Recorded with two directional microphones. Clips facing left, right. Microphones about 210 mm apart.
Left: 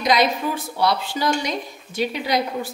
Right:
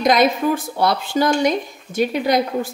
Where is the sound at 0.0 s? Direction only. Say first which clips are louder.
Right 4 dB; 50° right (ahead or behind).